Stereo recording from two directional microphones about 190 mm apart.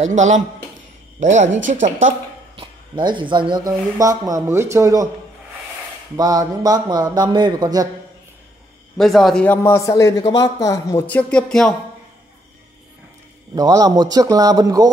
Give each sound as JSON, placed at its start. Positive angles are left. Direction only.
{"t": 1.2, "sound": "a woman's voice", "side_deg": -40}
{"t": 2.5, "sound": "speech", "side_deg": -25}
{"t": 6.1, "sound": "speech", "side_deg": -20}
{"t": 8.9, "sound": "a man's voice", "side_deg": 0}
{"t": 13.6, "sound": "speech", "side_deg": -20}